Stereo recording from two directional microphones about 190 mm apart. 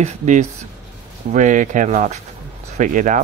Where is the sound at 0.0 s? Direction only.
40° right (ahead or behind).